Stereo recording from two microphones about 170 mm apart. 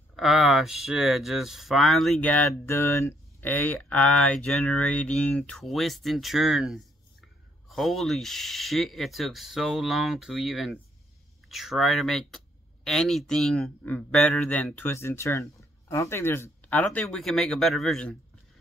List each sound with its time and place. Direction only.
0.1 s a man's voice: centre (ahead or behind)